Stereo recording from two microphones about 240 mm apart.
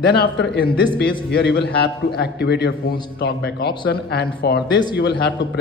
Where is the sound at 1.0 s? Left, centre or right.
Left.